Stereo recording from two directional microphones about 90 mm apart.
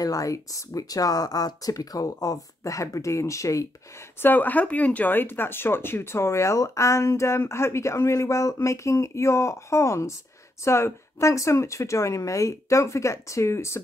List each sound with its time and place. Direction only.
0.0 s speech: 40° left (ahead or behind)
4.2 s speech: 20° left (ahead or behind)